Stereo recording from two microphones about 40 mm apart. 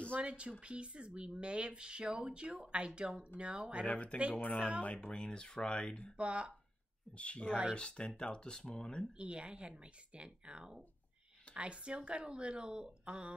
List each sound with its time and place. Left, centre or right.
0.2 s speech: right
3.8 s speech: left
5.1 s speech: left
6.1 s speech: right
7.2 s speech: left
9.2 s speech: right